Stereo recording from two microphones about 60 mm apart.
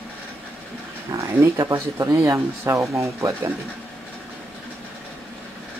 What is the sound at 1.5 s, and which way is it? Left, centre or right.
Speech, right.